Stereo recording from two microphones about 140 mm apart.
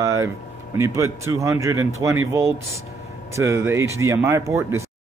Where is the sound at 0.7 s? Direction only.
20° right (ahead or behind).